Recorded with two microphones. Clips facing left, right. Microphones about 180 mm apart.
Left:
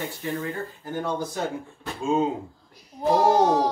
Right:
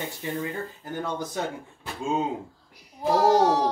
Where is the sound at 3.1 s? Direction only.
20° left (ahead or behind).